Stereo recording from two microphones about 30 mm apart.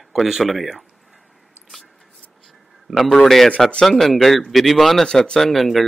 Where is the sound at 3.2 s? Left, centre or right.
Centre.